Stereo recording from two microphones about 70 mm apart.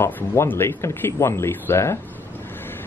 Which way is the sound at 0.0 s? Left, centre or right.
Left.